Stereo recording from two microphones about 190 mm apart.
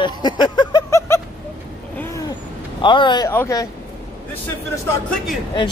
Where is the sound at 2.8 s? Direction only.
25° left (ahead or behind).